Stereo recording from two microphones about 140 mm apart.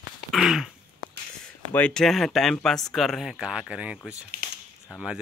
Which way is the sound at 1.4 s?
10° left (ahead or behind).